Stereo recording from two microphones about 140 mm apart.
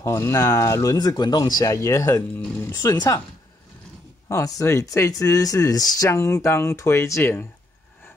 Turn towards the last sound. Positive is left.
turn(degrees=15)  # may be behind; listen again after turning